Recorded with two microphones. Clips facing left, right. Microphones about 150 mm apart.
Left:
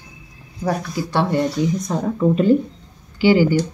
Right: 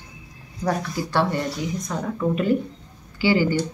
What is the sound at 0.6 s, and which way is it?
Speech, 20° left (ahead or behind).